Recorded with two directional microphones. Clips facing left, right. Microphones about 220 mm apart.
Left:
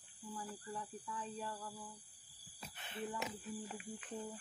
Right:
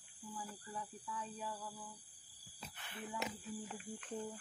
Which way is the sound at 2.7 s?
20° left (ahead or behind).